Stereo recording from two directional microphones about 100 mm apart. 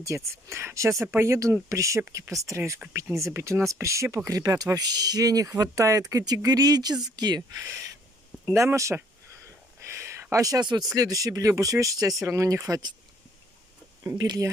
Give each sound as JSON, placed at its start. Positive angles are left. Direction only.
{"t": 0.0, "sound": "speech", "side_deg": -30}
{"t": 8.5, "sound": "speech", "side_deg": -30}
{"t": 9.8, "sound": "a sound", "side_deg": -30}
{"t": 11.0, "sound": "speech", "side_deg": -35}
{"t": 14.1, "sound": "speech", "side_deg": -45}